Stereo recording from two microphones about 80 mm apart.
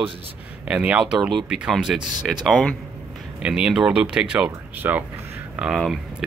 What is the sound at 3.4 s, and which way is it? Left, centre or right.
Speech, centre.